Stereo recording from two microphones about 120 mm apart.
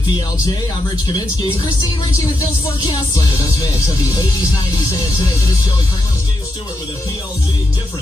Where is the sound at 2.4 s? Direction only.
30° left (ahead or behind).